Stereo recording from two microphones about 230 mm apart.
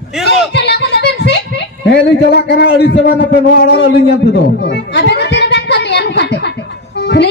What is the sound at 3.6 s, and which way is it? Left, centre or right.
Speech, left.